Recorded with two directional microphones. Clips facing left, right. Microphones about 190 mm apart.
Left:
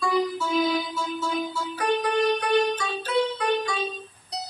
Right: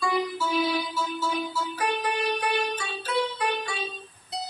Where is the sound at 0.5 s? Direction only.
5° right (ahead or behind).